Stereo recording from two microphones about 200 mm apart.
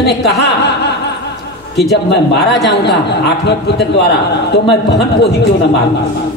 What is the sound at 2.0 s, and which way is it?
A man's voice, 55° left (ahead or behind).